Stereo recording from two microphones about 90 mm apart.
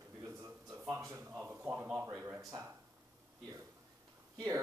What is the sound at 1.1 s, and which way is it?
Speech, 25° right (ahead or behind).